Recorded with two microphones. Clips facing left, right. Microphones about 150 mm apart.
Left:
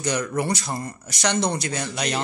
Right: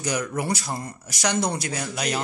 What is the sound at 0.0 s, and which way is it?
Speech, 10° right (ahead or behind).